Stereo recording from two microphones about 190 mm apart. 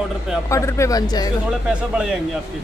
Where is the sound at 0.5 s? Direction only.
15° left (ahead or behind).